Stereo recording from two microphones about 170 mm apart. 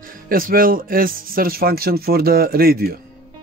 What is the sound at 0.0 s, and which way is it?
Speech, 55° right (ahead or behind).